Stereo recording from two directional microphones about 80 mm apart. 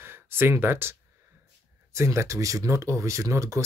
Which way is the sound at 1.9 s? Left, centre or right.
Right.